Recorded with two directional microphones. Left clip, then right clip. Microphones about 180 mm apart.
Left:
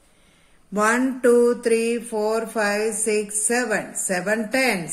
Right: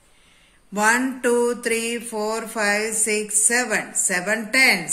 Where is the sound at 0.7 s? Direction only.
45° left (ahead or behind).